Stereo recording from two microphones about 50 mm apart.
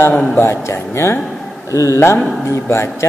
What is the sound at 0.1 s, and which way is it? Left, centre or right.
Speech, left.